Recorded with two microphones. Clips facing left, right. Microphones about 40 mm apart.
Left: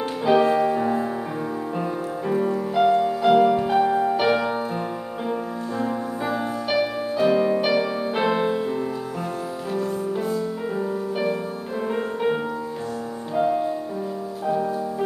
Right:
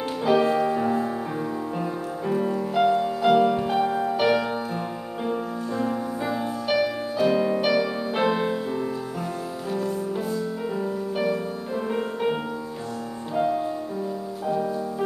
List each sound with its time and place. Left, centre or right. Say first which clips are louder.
0.2 s music: left 2 dB; centre
13.4 s music: left 2 dB; centre